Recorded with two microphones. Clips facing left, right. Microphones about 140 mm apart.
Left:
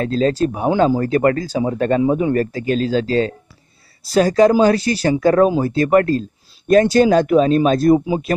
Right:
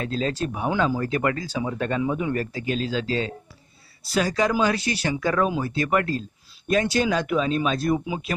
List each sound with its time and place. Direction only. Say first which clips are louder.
0.0 s speech: left 9 dB; 40° left (ahead or behind)